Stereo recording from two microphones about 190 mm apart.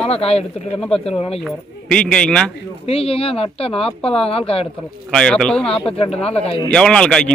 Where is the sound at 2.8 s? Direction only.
30° left (ahead or behind).